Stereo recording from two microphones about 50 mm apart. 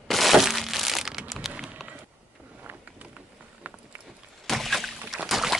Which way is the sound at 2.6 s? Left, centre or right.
Right.